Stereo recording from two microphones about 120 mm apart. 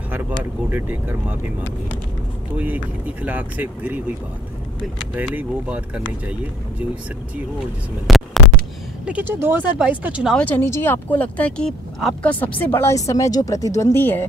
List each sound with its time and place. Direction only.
0.1 s speech: 15° right (ahead or behind)
2.5 s speech: 15° right (ahead or behind)
5.1 s speech: 10° right (ahead or behind)
8.1 s a sound: centre (ahead or behind)
9.0 s speech: 15° right (ahead or behind)
10.3 s speech: 15° left (ahead or behind)